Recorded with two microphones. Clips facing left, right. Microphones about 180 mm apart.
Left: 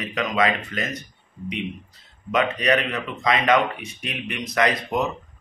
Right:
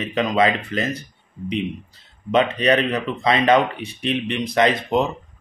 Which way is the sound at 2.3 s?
30° right (ahead or behind).